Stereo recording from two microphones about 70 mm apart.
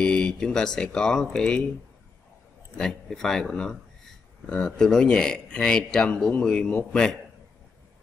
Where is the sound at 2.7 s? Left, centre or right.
Centre.